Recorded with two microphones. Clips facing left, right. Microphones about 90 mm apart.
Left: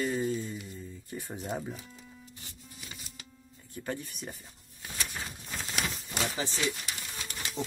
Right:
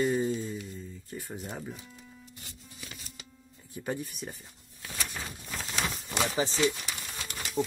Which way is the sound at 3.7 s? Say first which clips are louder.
Right 2 dB; 15° right (ahead or behind).